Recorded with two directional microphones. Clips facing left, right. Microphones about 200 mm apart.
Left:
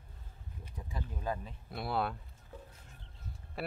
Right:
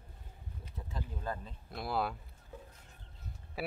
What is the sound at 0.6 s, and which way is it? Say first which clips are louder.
Speech: left 1 dB; 10° left (ahead or behind).